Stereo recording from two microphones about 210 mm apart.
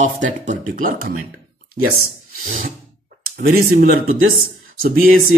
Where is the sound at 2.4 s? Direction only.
40° right (ahead or behind).